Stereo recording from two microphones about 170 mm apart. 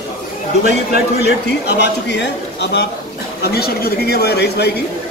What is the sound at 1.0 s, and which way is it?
Speech, 75° left (ahead or behind).